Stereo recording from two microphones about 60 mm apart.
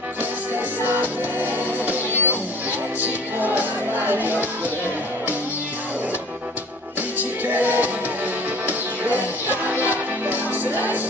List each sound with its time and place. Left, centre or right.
0.8 s music: right
7.0 s music: right